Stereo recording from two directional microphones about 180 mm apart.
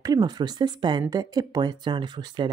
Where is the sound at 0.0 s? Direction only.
20° right (ahead or behind).